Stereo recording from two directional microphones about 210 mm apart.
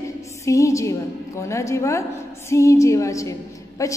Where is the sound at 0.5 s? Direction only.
15° left (ahead or behind).